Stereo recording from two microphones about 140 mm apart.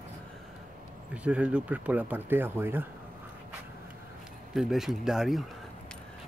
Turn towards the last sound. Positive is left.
turn(degrees=0)  # may be behind; listen again after turning